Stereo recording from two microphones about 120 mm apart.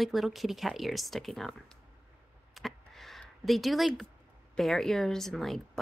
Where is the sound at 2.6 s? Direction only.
Centre (ahead or behind).